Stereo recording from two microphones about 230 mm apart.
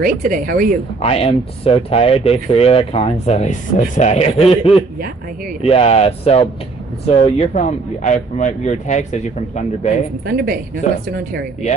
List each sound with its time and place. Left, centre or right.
0.0 s speech: right
1.0 s speech: left
5.6 s speech: left
10.2 s speech: right